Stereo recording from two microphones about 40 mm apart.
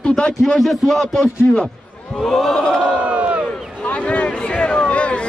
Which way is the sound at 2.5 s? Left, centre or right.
Left.